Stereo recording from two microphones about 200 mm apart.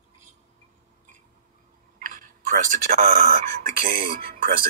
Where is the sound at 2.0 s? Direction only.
40° right (ahead or behind).